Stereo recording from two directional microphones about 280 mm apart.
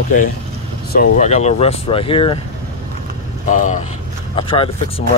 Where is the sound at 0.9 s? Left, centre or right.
Left.